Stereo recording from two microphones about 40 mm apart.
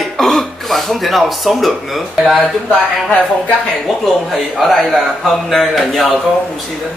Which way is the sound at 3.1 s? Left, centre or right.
Left.